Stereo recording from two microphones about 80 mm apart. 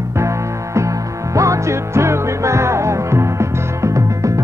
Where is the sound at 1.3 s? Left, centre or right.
Right.